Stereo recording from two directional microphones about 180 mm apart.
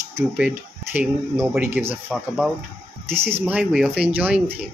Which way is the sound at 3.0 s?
10° right (ahead or behind).